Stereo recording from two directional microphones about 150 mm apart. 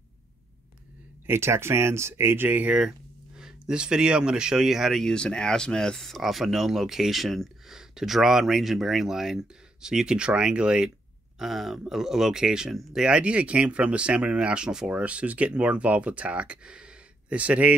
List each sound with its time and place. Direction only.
1.2 s speech: 15° right (ahead or behind)